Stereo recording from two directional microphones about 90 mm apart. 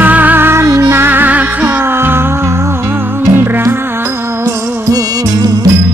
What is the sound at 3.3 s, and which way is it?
Music, 25° right (ahead or behind).